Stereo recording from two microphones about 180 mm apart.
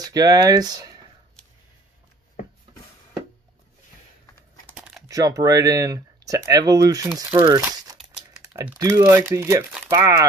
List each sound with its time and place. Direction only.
0.0 s speech: 20° right (ahead or behind)
4.7 s a sound: 5° right (ahead or behind)
5.0 s speech: 20° right (ahead or behind)